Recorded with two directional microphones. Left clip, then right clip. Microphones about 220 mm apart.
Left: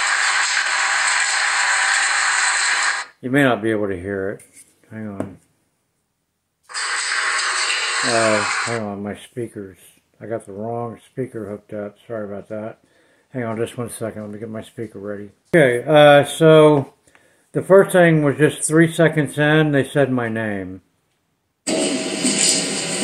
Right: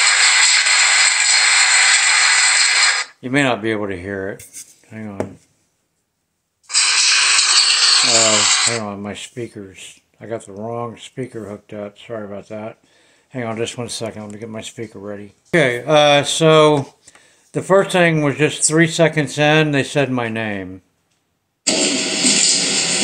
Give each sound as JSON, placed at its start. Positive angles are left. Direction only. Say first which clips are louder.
{"t": 0.0, "sound": "a sound", "louder": "right 5 dB", "side_deg": -25}
{"t": 3.2, "sound": "speech", "louder": "even", "side_deg": 5}
{"t": 6.7, "sound": "a sound", "louder": "right 8 dB", "side_deg": -25}
{"t": 8.3, "sound": "speech", "louder": "right 3 dB", "side_deg": -25}
{"t": 8.7, "sound": "speech", "louder": "right 1 dB", "side_deg": 0}
{"t": 22.4, "sound": "music", "louder": "right 3 dB", "side_deg": -20}